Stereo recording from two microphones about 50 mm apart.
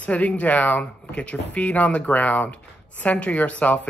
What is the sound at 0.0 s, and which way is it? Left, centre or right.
Speech, left.